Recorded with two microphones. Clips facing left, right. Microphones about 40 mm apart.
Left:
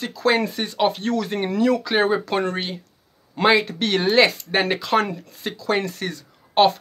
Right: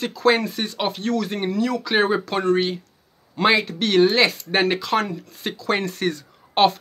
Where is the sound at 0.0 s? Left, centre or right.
Centre.